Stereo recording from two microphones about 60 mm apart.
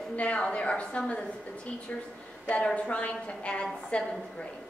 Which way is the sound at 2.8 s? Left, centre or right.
Left.